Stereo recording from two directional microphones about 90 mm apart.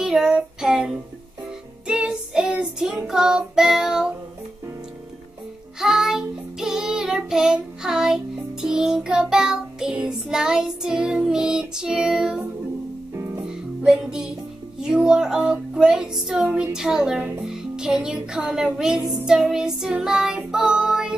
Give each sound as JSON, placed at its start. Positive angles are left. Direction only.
{"t": 0.0, "sound": "child singing", "side_deg": -5}
{"t": 1.9, "sound": "music", "side_deg": -10}
{"t": 5.8, "sound": "child singing", "side_deg": -5}
{"t": 13.1, "sound": "music", "side_deg": -35}
{"t": 13.8, "sound": "music", "side_deg": -5}